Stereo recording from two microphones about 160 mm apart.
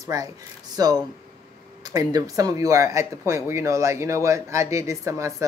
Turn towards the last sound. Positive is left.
turn(degrees=-20)  # may be behind; listen again after turning